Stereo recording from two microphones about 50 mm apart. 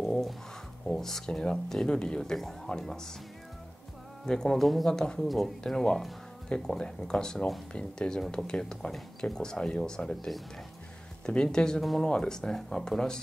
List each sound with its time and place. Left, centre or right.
0.0 s a sound: centre
0.8 s speech: centre
2.3 s speech: centre
4.3 s speech: centre
7.7 s speech: centre